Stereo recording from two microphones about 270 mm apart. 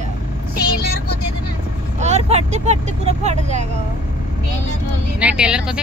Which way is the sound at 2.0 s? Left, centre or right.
Right.